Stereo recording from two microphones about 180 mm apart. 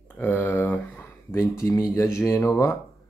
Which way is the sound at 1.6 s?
15° left (ahead or behind).